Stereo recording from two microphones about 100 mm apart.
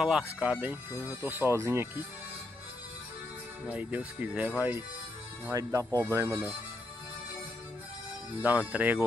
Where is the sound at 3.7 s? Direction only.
15° right (ahead or behind).